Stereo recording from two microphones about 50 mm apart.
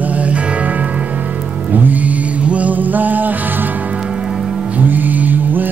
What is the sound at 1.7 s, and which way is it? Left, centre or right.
Vehicle, right.